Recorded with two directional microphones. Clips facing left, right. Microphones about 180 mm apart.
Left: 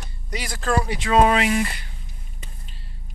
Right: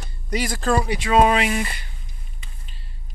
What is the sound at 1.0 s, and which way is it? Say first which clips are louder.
Speech: left 1 dB; 10° right (ahead or behind).